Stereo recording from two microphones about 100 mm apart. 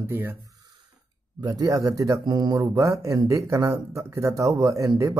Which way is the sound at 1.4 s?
40° right (ahead or behind).